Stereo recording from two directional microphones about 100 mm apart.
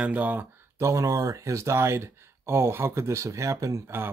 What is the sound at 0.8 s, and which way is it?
Speech, 35° right (ahead or behind).